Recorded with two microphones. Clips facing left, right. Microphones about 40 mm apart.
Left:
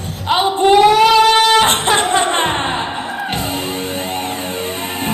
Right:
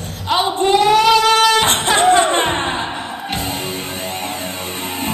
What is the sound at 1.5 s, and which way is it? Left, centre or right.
Music, left.